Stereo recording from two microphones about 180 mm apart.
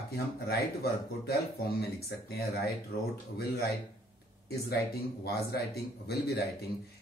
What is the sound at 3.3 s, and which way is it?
Speech, 60° left (ahead or behind).